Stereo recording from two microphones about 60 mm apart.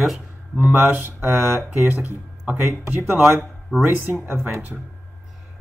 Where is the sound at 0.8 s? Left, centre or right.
Right.